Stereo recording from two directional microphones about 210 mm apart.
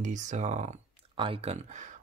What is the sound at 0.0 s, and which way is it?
Speech, 35° right (ahead or behind).